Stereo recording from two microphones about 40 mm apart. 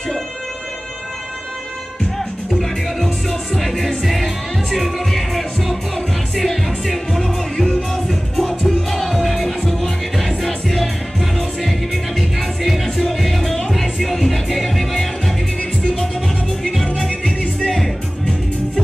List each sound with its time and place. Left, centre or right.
2.5 s music: centre
7.2 s music: centre
7.9 s music: centre
17.6 s music: centre